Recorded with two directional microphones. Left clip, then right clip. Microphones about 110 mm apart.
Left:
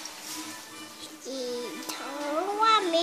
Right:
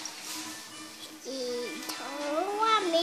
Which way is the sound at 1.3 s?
Centre (ahead or behind).